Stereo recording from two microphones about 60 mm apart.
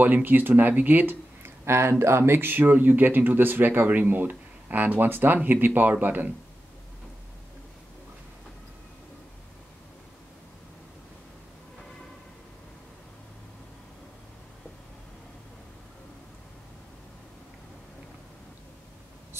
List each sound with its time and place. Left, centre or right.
0.0 s speech: right
1.7 s speech: right